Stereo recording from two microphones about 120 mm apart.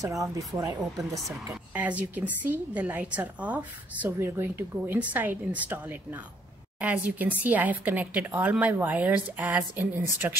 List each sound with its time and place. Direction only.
0.0 s speech: 30° right (ahead or behind)
1.5 s a woman's voice: 10° right (ahead or behind)